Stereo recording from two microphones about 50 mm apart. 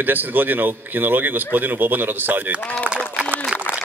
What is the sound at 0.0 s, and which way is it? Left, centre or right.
Speech, right.